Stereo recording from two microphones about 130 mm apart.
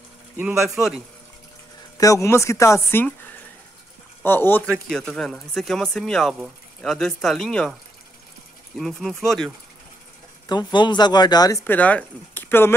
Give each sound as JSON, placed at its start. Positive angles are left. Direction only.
{"t": 0.4, "sound": "speech", "side_deg": -15}
{"t": 2.0, "sound": "speech", "side_deg": 25}
{"t": 4.2, "sound": "speech", "side_deg": 15}
{"t": 4.8, "sound": "speech", "side_deg": 5}
{"t": 8.7, "sound": "speech", "side_deg": 0}
{"t": 10.5, "sound": "speech", "side_deg": 35}
{"t": 11.6, "sound": "speech", "side_deg": 10}